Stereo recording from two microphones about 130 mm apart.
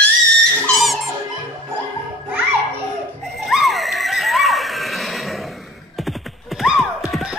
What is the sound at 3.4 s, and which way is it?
Neigh, centre (ahead or behind).